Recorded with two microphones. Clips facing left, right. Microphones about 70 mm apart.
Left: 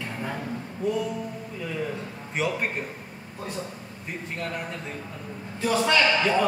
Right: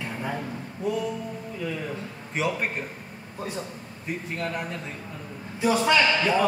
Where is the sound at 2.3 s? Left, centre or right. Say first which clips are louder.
Even; centre.